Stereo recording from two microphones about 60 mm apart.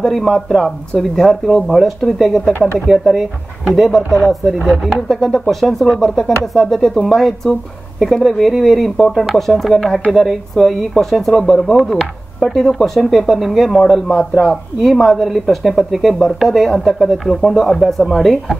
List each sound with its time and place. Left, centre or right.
0.0 s speech: centre
14.0 s a man's voice: left
14.5 s speech: centre